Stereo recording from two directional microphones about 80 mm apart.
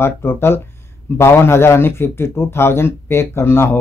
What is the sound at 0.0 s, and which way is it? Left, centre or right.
A man's voice, left.